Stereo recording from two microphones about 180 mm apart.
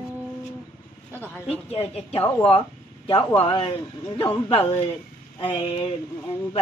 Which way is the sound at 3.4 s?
30° left (ahead or behind).